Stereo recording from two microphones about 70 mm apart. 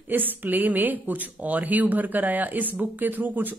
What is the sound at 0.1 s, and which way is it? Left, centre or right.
A woman's voice, right.